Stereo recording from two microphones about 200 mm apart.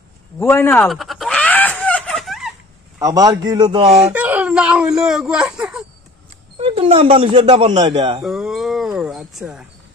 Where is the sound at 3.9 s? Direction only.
5° right (ahead or behind).